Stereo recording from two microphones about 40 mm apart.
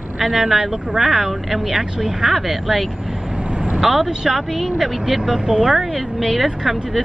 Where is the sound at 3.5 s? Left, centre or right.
Right.